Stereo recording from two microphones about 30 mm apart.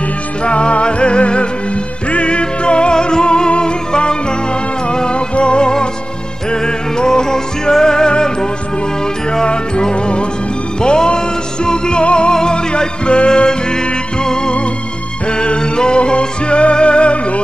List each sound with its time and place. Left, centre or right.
0.4 s music: left
15.2 s music: left